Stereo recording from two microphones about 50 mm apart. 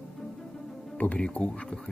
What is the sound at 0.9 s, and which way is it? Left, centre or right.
Speech, left.